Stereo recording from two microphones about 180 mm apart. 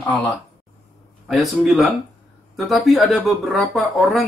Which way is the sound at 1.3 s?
Centre (ahead or behind).